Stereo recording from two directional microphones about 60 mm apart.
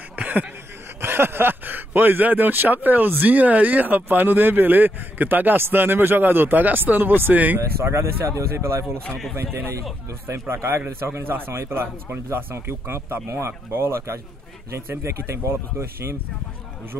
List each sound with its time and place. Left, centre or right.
0.1 s a sound: right
1.0 s speech: right
7.8 s speech: right
10.4 s speech: right